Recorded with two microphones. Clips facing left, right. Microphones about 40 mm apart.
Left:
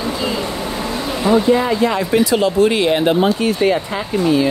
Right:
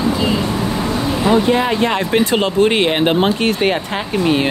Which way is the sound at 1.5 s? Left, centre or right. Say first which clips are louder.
Even; right.